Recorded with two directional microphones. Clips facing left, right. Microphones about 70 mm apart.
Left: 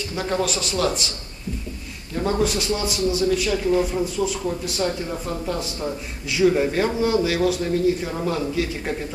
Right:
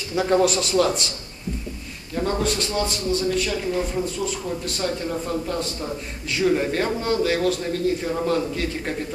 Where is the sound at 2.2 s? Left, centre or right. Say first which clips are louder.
Left 1 dB; centre.